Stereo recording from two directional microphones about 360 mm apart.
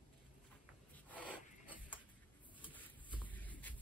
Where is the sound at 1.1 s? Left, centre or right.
Centre.